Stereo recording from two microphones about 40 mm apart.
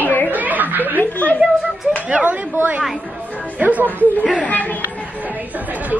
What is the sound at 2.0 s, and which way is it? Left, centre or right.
Speech, right.